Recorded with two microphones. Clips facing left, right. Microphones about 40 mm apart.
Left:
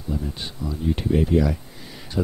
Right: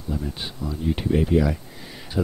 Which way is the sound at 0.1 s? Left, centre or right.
Centre.